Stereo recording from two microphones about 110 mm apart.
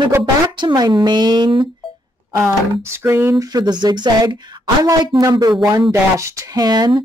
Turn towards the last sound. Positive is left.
turn(degrees=-40)  # may be behind; listen again after turning